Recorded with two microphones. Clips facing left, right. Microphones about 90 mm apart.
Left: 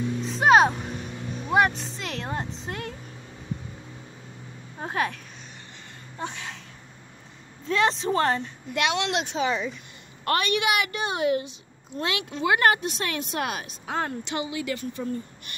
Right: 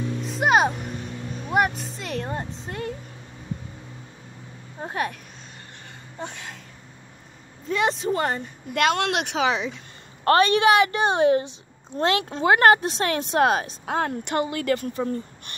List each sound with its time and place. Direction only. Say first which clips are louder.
0.2 s music: left 2 dB; 5° right (ahead or behind)
1.5 s speech: left 1 dB; 5° right (ahead or behind)
4.7 s speech: even; centre (ahead or behind)
7.6 s speech: even; 5° right (ahead or behind)
8.7 s speech: right 3 dB; 50° right (ahead or behind); by 9.8 s 90° right
10.2 s speech: right 7 dB; 35° right (ahead or behind)
13.8 s speech: right 1 dB; 55° right (ahead or behind)